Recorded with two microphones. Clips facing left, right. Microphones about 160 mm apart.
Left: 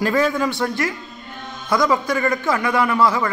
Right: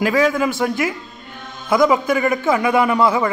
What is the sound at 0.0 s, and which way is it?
A man's voice, 5° right (ahead or behind).